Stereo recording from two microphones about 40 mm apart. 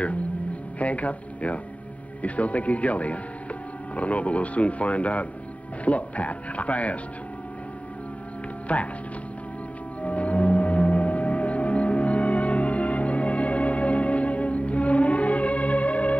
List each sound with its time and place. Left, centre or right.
0.7 s speech: left
8.7 s speech: left
10.0 s music: left